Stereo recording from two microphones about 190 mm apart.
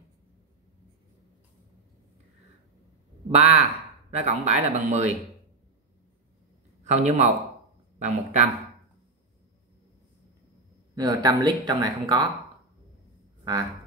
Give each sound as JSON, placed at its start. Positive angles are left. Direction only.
{"t": 3.3, "sound": "speech", "side_deg": -35}
{"t": 6.8, "sound": "a man's voice", "side_deg": -40}
{"t": 11.0, "sound": "speech", "side_deg": -20}
{"t": 13.4, "sound": "a sound", "side_deg": -20}